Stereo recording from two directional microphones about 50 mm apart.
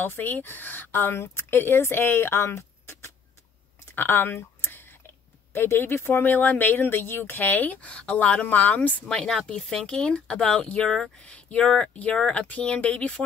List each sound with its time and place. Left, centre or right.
0.0 s speech: left
1.1 s speech: left
3.9 s speech: left
4.6 s a sound: left
5.5 s speech: left
7.9 s speech: centre
8.2 s speech: left
9.1 s speech: centre; by 13.2 s left